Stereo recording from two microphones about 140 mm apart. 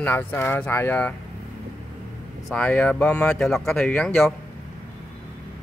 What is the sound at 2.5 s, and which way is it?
A man's voice, 10° left (ahead or behind).